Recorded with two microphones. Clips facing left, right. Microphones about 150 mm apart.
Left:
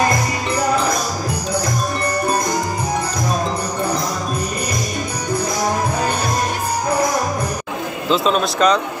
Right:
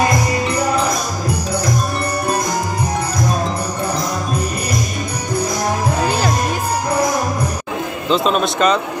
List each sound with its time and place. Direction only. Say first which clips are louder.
8.1 s speech: right 1 dB; centre (ahead or behind)